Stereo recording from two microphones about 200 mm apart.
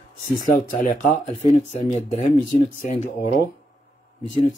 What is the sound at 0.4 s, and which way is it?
Speech, 40° left (ahead or behind).